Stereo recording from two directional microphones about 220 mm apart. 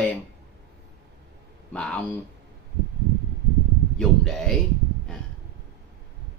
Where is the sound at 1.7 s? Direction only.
5° left (ahead or behind).